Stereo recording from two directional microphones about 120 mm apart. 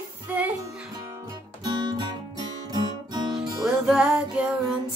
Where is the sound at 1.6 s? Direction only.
40° right (ahead or behind).